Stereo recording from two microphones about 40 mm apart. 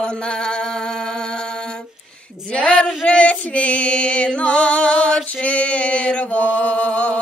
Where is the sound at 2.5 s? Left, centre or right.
Left.